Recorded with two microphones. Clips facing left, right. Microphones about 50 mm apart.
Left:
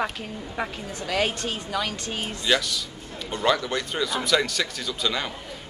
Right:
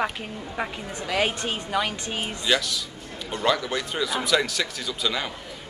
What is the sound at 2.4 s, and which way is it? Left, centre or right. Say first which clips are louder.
Speech: left 1 dB; centre.